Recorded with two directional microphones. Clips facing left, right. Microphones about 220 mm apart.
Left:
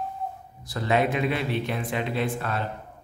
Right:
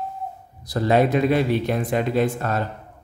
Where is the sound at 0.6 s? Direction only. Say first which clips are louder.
Right 6 dB; 40° right (ahead or behind).